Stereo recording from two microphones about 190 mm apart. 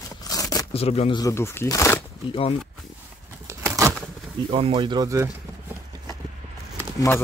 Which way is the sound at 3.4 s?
15° right (ahead or behind).